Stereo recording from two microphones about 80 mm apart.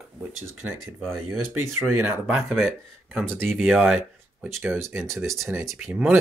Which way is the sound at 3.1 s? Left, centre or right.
Centre.